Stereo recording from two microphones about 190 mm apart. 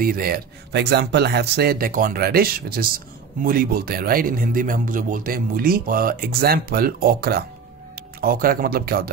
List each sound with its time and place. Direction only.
0.0 s speech: 50° right (ahead or behind)